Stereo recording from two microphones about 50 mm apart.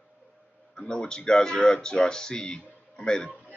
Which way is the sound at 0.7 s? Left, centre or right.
Centre.